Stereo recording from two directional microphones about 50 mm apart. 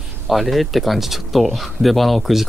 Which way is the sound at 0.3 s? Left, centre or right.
Centre.